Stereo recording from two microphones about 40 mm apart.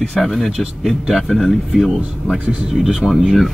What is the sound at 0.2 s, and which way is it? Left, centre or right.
Speech, centre.